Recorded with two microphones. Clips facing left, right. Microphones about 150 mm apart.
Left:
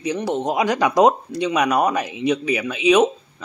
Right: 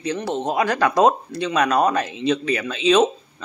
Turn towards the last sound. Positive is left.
turn(degrees=10)  # may be behind; listen again after turning